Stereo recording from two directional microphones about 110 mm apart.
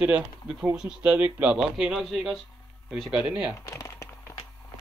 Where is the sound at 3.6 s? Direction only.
30° left (ahead or behind).